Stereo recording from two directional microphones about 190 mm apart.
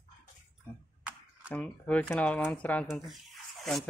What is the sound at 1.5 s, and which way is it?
Speech, 5° left (ahead or behind).